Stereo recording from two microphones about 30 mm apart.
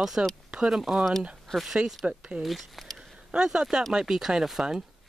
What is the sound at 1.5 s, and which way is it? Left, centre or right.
Speech, left.